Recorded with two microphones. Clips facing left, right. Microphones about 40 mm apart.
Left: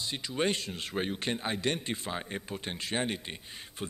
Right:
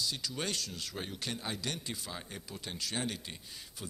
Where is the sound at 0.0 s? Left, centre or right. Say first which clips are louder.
Left 6 dB; left.